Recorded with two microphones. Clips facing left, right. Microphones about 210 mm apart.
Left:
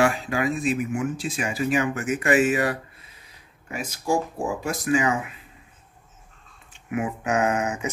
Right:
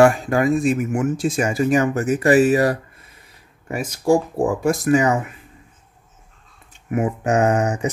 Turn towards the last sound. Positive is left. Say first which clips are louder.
# right 6 dB
turn(degrees=-40)  # may be behind; listen again after turning